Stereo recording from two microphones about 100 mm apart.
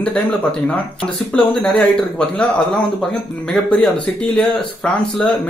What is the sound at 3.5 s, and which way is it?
A man's voice, centre (ahead or behind).